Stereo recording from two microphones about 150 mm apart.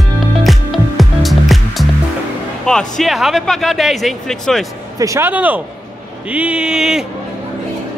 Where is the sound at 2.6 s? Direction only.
5° left (ahead or behind).